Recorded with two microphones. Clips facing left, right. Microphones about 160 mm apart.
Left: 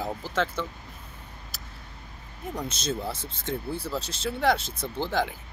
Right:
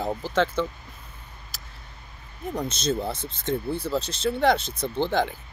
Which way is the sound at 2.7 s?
5° left (ahead or behind).